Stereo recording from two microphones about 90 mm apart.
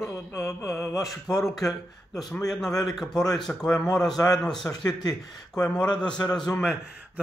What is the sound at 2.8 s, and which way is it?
A man's voice, centre (ahead or behind).